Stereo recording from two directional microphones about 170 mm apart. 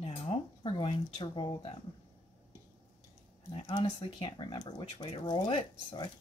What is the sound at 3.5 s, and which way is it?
Speech, 25° left (ahead or behind).